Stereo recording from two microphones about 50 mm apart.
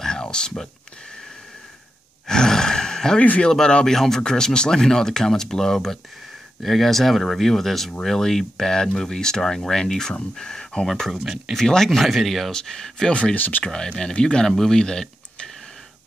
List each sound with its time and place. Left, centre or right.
0.0 s a sound: centre
2.2 s roar: centre
3.2 s speech: left
3.4 s speech: centre
11.1 s speech: centre
11.5 s speech: centre
13.1 s speech: left
13.4 s speech: left
13.7 s speech: centre